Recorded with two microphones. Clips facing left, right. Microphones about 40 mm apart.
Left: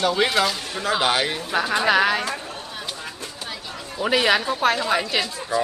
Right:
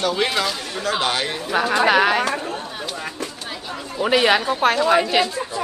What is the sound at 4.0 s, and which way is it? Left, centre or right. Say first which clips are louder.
Speech: right 2 dB; centre.